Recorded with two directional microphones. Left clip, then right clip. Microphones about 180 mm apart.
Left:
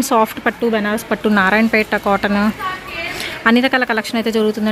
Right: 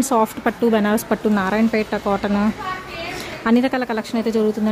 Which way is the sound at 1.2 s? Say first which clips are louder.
Left 6 dB; 5° left (ahead or behind).